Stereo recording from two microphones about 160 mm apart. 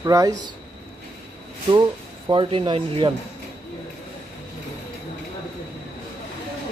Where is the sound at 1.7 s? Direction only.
25° right (ahead or behind).